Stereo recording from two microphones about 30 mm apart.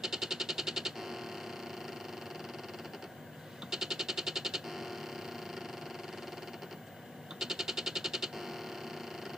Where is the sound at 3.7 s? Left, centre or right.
Centre.